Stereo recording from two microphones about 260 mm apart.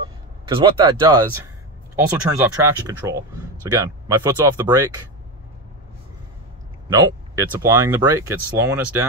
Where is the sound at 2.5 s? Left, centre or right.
Centre.